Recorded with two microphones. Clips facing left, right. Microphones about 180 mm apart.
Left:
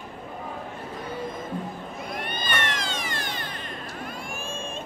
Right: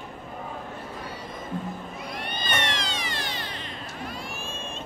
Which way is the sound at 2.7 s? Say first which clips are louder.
Left 1 dB; 50° left (ahead or behind).